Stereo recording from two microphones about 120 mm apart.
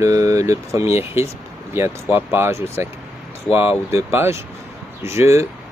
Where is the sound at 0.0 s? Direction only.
25° right (ahead or behind).